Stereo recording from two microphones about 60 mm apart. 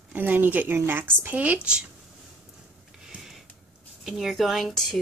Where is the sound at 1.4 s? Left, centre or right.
Right.